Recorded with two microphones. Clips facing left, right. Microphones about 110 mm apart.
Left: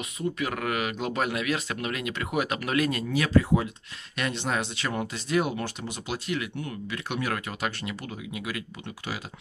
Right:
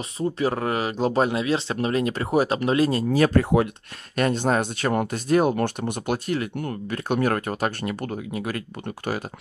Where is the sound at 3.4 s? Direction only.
60° right (ahead or behind).